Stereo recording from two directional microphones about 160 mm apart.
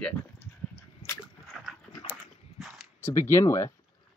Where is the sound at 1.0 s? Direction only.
40° left (ahead or behind).